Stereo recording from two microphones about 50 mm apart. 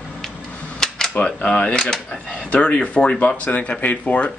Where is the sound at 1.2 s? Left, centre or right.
Left.